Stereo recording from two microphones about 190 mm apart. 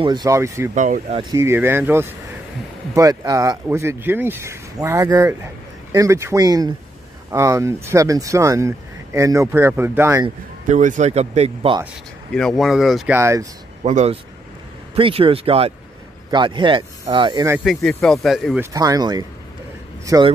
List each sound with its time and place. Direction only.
0.0 s speech: 20° right (ahead or behind)
0.7 s speech: 40° right (ahead or behind)
1.3 s speech: 15° right (ahead or behind)
10.7 s speech: 40° right (ahead or behind)
12.4 s speech: centre (ahead or behind)
13.2 s speech: 15° right (ahead or behind)
13.8 s speech: 35° right (ahead or behind)
17.6 s speech: 5° left (ahead or behind)
18.6 s speech: 20° right (ahead or behind)